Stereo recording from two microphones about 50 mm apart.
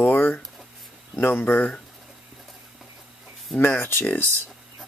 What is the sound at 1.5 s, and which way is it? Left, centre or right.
Speech, left.